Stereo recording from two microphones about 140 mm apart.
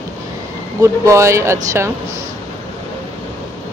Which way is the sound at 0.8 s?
20° right (ahead or behind).